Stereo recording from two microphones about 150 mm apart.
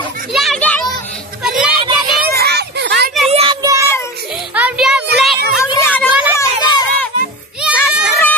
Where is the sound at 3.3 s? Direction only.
40° right (ahead or behind).